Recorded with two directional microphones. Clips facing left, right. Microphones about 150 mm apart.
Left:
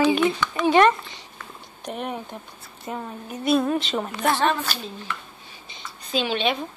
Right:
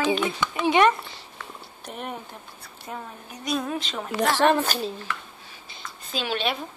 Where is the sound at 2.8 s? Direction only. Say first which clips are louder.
Left 5 dB; 5° left (ahead or behind).